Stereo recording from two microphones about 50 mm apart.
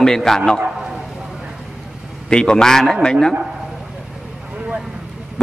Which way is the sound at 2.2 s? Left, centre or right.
Centre.